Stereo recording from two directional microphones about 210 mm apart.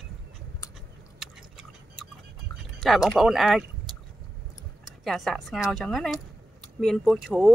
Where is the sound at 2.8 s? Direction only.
Centre (ahead or behind).